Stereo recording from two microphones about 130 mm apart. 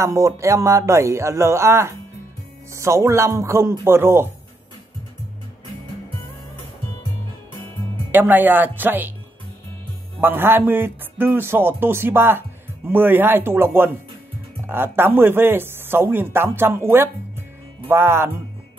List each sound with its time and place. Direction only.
0.0 s speech: 25° right (ahead or behind)
8.1 s speech: 15° right (ahead or behind)
10.2 s speech: 15° right (ahead or behind)